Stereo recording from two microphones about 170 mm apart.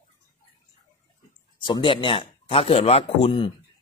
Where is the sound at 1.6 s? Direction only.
30° left (ahead or behind).